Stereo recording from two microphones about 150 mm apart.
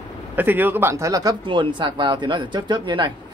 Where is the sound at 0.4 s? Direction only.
10° right (ahead or behind).